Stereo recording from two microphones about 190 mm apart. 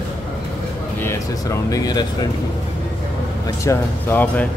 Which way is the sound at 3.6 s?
15° left (ahead or behind).